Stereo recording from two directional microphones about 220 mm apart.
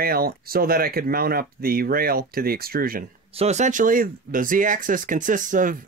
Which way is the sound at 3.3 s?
30° right (ahead or behind).